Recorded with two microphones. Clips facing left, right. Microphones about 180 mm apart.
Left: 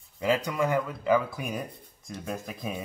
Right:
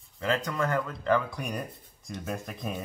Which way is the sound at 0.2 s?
10° left (ahead or behind).